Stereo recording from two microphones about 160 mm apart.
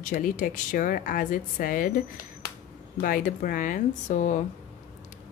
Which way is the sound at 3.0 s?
60° left (ahead or behind).